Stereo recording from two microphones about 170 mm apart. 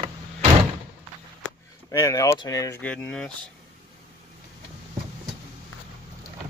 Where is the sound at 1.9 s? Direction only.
20° left (ahead or behind).